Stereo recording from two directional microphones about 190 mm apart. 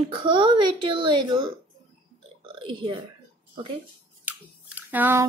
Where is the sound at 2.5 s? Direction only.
25° right (ahead or behind).